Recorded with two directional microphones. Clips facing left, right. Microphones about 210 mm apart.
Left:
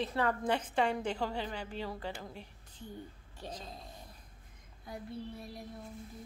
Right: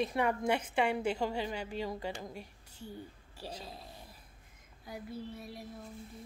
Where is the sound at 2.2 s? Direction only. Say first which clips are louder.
Right 2 dB; 10° right (ahead or behind).